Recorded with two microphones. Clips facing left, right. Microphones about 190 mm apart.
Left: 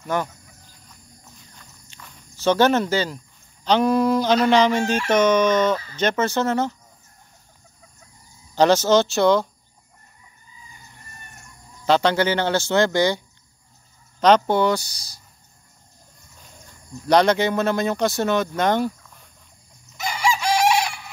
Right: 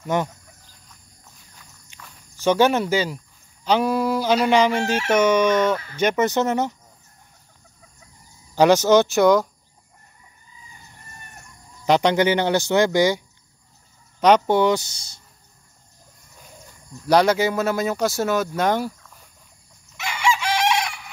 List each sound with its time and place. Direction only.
0.0 s speech: 20° right (ahead or behind)
2.4 s fowl: 10° right (ahead or behind)
8.5 s fowl: 15° right (ahead or behind)
11.8 s fowl: 15° right (ahead or behind)
14.2 s speech: 15° right (ahead or behind)
17.1 s speech: 5° right (ahead or behind)
20.0 s chicken: 35° left (ahead or behind)